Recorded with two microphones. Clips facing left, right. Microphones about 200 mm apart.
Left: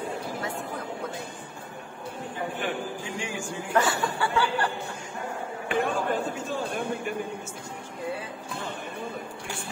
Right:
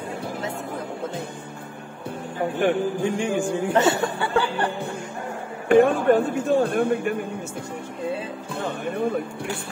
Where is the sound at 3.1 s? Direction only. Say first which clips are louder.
Right 10 dB; 55° right (ahead or behind).